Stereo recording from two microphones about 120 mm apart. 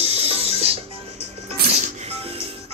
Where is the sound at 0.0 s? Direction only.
60° right (ahead or behind).